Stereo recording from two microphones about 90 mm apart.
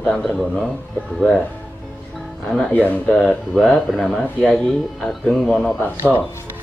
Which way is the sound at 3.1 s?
5° left (ahead or behind).